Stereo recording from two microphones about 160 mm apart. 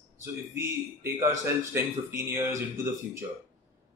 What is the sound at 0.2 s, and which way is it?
A man's voice, 15° right (ahead or behind).